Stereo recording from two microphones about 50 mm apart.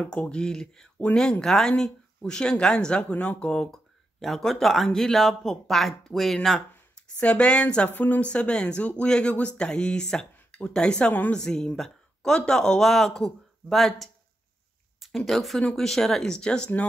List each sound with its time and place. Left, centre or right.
0.0 s speech: left; by 6.6 s centre
7.2 s speech: left
8.3 s speech: left
10.0 s a sound: centre
10.6 s speech: centre
11.1 s a woman's voice: left
11.3 s speech: centre